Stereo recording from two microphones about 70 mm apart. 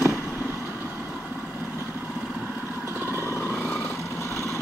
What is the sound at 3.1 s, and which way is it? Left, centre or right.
Vehicle, right.